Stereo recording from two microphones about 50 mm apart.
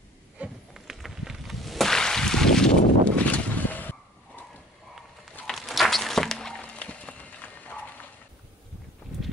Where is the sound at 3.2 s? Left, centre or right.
Left.